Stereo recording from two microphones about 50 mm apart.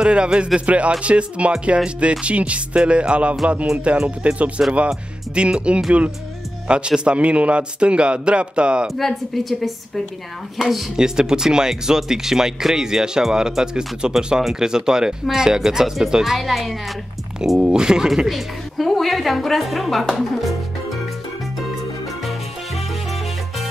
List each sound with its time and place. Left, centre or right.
0.0 s speech: centre
8.9 s a woman's voice: centre
11.0 s a woman's voice: centre
17.6 s a woman's voice: centre